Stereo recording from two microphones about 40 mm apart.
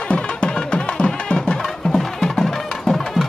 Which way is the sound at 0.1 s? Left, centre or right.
Left.